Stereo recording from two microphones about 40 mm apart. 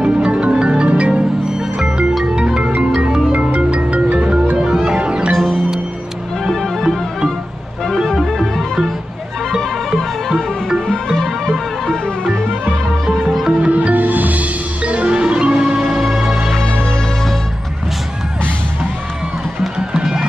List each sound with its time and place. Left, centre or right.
0.0 s music: right
1.5 s music: centre; by 4.4 s right
4.8 s music: right
5.3 s music: centre
8.2 s music: centre
11.1 s music: centre
13.7 s music: right; by 16.5 s centre
19.8 s music: centre